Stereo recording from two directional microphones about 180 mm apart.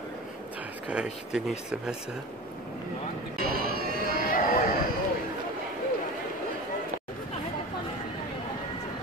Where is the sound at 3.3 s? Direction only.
55° right (ahead or behind).